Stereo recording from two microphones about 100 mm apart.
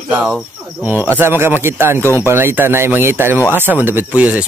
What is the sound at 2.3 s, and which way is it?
Speech, 20° right (ahead or behind).